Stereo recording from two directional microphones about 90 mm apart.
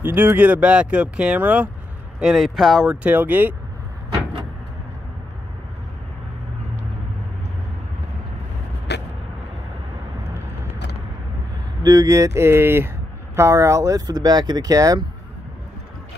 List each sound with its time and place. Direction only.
0.0 s speech: 25° right (ahead or behind)
2.4 s speech: centre (ahead or behind)
3.0 s speech: 20° right (ahead or behind)
11.8 s speech: 45° right (ahead or behind)